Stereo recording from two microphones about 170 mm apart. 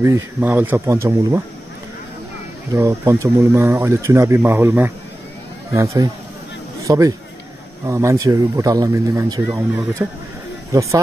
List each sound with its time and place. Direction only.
0.0 s speech: 15° right (ahead or behind)
2.7 s speech: 15° right (ahead or behind)